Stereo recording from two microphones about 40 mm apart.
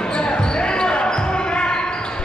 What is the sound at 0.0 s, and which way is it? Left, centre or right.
Basketball bounce, left.